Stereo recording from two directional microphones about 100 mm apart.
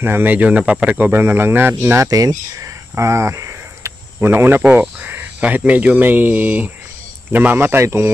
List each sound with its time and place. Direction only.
0.0 s speech: 20° right (ahead or behind)
2.0 s speech: 35° right (ahead or behind)